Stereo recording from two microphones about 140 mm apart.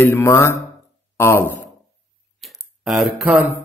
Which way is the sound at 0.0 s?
20° left (ahead or behind).